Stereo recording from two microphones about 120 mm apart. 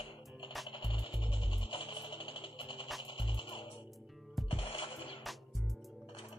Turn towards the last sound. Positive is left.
turn(degrees=50)  # may be behind; listen again after turning